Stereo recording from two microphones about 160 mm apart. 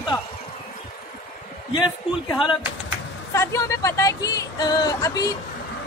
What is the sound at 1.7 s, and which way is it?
Speech, 30° left (ahead or behind).